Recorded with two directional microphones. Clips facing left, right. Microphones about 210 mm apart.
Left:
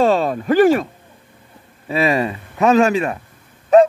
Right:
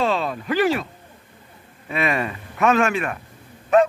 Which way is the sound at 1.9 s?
30° left (ahead or behind).